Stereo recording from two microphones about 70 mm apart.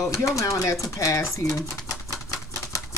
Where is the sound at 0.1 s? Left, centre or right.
Left.